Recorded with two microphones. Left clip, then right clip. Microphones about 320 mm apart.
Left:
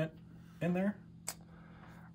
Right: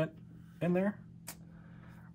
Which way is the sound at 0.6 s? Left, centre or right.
Centre.